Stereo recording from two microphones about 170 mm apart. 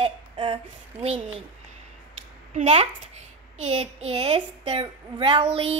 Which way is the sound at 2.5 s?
40° right (ahead or behind).